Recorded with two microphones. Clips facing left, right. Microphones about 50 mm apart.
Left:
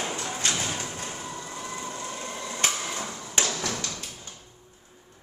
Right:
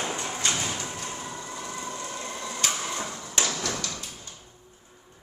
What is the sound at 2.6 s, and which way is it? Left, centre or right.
Printer, left.